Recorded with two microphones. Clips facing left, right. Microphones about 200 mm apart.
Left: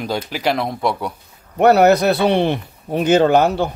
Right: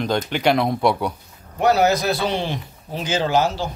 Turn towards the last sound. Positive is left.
turn(degrees=60)  # may be behind; listen again after turning